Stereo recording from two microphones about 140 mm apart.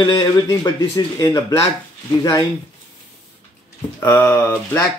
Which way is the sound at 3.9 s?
15° left (ahead or behind).